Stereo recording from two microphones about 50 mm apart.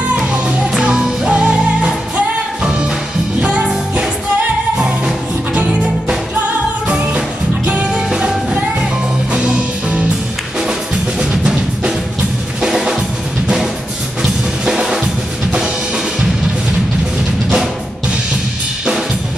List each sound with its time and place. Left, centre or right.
0.7 s music: centre
4.7 s music: centre
5.5 s music: right
8.1 s music: centre
11.1 s drum: centre
12.6 s drum kit: centre
14.7 s drum kit: centre